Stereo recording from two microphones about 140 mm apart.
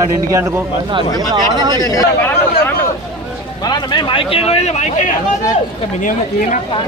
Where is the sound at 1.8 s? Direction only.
25° left (ahead or behind).